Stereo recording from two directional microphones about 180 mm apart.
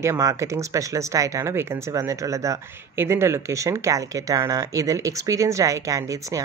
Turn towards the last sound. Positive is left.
turn(degrees=-15)  # may be behind; listen again after turning